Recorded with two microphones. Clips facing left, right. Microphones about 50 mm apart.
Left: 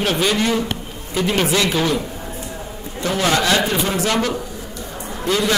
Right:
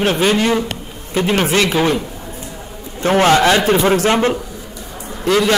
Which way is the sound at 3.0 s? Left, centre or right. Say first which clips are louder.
Right 7 dB; right.